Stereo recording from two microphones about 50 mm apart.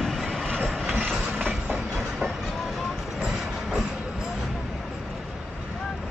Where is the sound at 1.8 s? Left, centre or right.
Centre.